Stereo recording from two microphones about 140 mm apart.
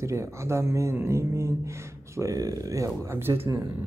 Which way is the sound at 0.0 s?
20° right (ahead or behind).